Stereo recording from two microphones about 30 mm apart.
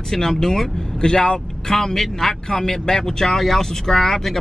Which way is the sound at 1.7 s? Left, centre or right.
Centre.